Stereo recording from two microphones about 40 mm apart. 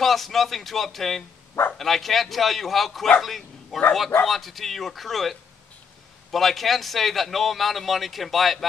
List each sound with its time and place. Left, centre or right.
0.0 s a man's voice: centre